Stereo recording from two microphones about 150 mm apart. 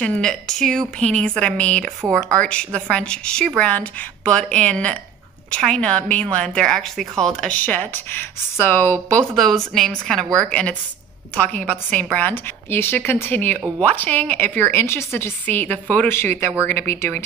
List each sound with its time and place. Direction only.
0.0 s a woman's voice: 5° left (ahead or behind)
2.0 s speech: 20° right (ahead or behind)
2.2 s a woman's voice: 5° left (ahead or behind)
9.3 s a woman's voice: centre (ahead or behind); by 17.2 s 15° left (ahead or behind)